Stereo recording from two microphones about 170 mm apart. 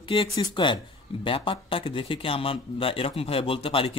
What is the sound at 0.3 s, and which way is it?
Speech, 25° left (ahead or behind).